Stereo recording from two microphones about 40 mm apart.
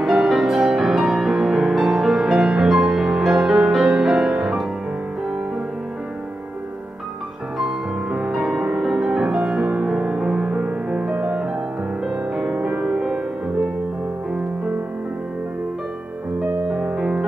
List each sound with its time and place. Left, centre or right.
0.1 s music: centre
7.5 s music: centre
8.5 s music: centre
12.8 s music: centre
16.7 s music: centre